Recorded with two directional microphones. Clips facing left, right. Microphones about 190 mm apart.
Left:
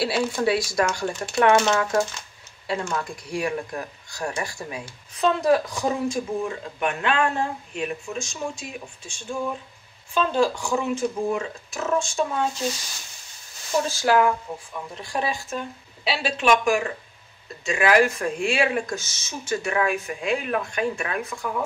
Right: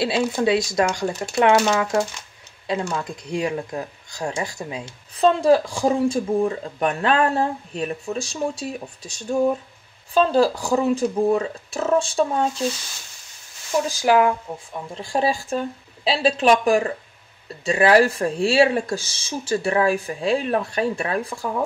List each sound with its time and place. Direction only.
0.0 s speech: 20° right (ahead or behind)
13.8 s speech: 15° right (ahead or behind); by 21.5 s 30° right (ahead or behind)